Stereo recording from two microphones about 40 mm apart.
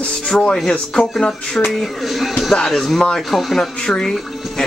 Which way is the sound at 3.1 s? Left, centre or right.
Centre.